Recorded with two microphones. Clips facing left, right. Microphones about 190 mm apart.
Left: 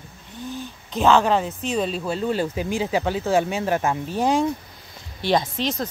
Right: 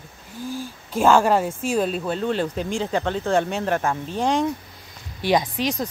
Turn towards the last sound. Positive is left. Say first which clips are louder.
# right 1 dB
turn(degrees=-15)  # may be behind; listen again after turning